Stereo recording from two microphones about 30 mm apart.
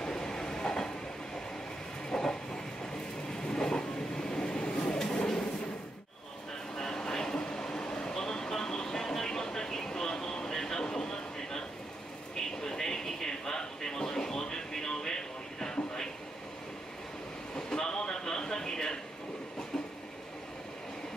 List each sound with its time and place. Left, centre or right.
0.0 s train: left
2.0 s train: left
6.8 s vehicle: centre
7.5 s train: left
8.1 s vehicle: left
12.6 s a sound: centre
17.6 s a sound: left